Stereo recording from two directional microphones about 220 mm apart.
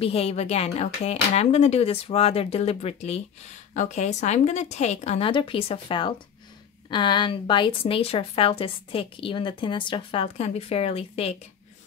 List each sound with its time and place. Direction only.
0.0 s a woman's voice: 25° left (ahead or behind)